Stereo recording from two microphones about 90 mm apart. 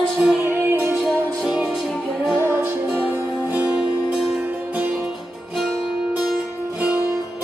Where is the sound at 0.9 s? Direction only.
5° right (ahead or behind).